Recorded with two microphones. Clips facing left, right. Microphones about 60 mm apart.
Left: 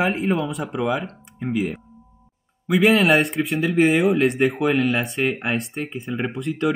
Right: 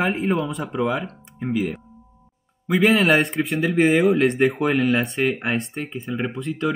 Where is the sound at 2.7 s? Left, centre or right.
Centre.